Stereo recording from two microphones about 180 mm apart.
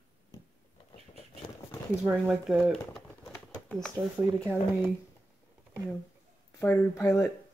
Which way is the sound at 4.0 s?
25° right (ahead or behind).